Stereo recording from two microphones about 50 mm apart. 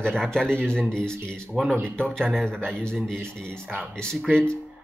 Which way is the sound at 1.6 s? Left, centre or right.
Centre.